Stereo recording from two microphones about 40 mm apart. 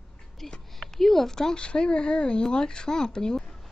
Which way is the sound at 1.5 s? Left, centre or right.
Left.